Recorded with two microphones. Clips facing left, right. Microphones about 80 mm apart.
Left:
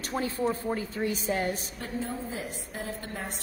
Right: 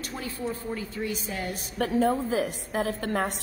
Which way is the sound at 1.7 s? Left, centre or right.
Right.